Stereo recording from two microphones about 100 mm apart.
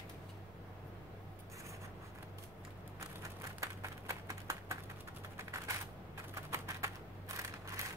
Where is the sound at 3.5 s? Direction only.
30° right (ahead or behind).